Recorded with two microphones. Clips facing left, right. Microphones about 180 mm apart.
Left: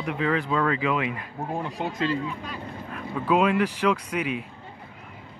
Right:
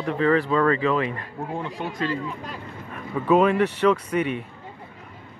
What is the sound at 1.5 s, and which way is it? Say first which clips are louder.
Speech: left 1 dB; 25° left (ahead or behind).